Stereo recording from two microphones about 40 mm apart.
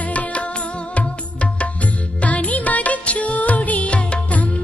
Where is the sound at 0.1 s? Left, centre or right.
Left.